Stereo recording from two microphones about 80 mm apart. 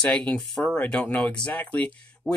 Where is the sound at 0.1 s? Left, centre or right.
Centre.